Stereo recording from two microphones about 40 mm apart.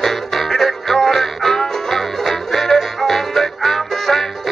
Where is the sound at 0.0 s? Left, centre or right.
Centre.